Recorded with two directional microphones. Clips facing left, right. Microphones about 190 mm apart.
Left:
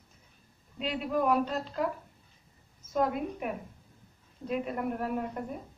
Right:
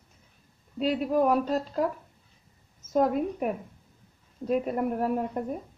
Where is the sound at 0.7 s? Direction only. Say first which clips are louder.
Right 6 dB; 40° right (ahead or behind).